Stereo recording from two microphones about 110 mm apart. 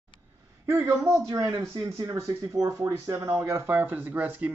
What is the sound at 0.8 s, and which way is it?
Speech, 25° right (ahead or behind).